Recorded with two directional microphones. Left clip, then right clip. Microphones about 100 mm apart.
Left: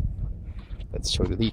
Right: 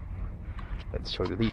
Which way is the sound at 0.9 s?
80° left.